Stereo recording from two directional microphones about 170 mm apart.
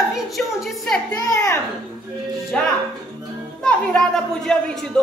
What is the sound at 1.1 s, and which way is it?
Speech, 20° left (ahead or behind).